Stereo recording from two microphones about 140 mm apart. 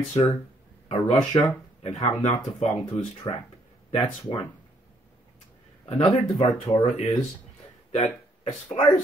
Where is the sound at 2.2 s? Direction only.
50° left (ahead or behind).